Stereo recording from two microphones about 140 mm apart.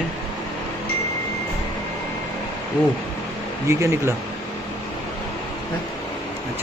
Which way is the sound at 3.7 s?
20° right (ahead or behind).